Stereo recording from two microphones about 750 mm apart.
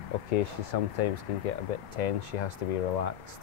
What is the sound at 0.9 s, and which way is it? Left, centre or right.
Speech, left.